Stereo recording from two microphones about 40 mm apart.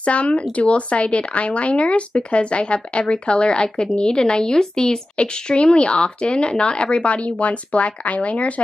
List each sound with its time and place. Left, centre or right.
0.0 s speech: left